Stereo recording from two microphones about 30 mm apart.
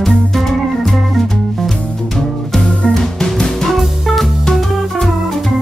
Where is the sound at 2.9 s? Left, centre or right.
Centre.